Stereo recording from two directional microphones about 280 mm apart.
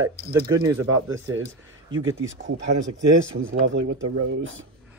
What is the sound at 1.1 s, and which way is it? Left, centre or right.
Speech, right.